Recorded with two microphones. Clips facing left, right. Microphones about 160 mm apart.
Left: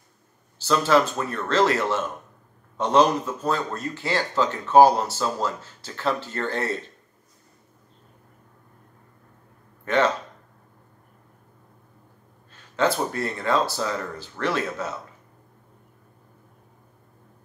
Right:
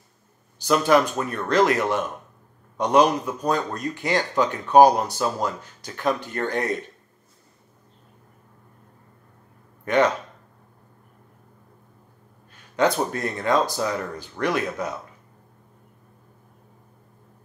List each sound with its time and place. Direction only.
0.6 s speech: 15° right (ahead or behind)
9.8 s speech: 15° right (ahead or behind)
12.7 s speech: 15° right (ahead or behind)